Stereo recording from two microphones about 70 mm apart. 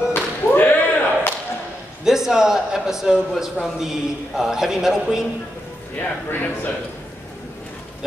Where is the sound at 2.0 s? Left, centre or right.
Centre.